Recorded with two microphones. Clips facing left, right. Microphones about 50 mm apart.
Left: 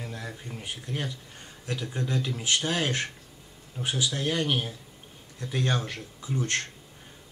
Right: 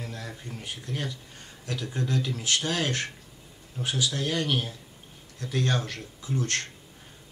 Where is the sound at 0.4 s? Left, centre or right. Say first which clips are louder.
Even; centre.